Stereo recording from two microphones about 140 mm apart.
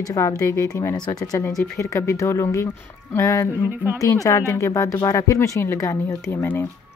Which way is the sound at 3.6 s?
15° right (ahead or behind).